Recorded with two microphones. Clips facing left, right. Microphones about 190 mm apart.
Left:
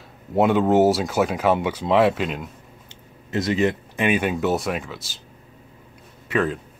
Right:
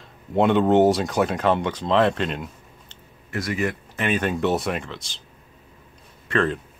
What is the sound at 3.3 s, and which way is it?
Speech, 20° left (ahead or behind).